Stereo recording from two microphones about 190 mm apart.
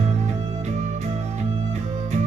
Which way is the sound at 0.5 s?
35° right (ahead or behind).